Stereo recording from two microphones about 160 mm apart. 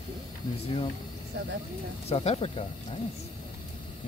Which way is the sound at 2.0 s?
40° left (ahead or behind).